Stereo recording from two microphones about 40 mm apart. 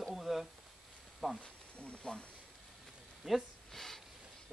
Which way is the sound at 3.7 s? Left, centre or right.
Centre.